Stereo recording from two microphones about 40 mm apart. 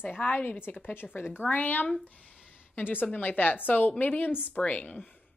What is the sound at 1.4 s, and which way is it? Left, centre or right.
Speech, left.